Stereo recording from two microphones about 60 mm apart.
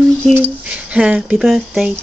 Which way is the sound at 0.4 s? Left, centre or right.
Right.